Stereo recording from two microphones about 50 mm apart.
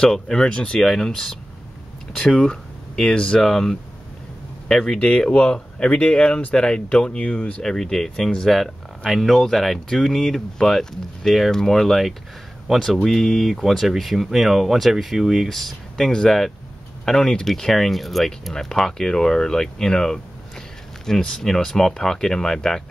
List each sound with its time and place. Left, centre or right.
0.0 s speech: centre
0.8 s speech: centre
7.2 s speech: left
7.6 s speech: centre
8.5 s speech: centre
15.5 s speech: centre